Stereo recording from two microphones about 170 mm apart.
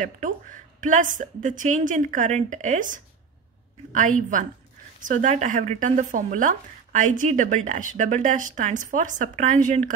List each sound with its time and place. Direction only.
0.0 s speech: 50° right (ahead or behind)